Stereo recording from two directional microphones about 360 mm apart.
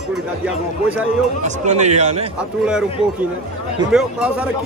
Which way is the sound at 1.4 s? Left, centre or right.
Centre.